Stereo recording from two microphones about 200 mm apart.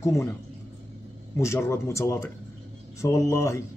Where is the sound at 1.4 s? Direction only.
15° left (ahead or behind).